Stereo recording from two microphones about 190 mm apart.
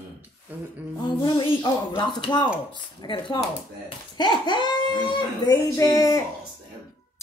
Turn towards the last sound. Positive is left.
turn(degrees=20)  # may be behind; listen again after turning